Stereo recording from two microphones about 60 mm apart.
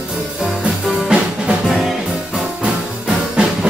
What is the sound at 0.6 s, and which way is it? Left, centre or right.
Music, centre.